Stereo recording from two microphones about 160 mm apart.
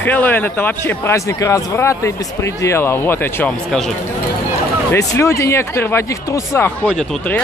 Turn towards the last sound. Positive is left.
turn(degrees=5)  # may be behind; listen again after turning